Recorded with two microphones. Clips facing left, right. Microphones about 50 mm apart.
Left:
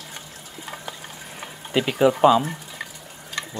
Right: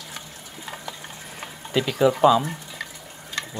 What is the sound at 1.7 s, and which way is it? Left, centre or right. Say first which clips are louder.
Speech: left 1 dB; centre.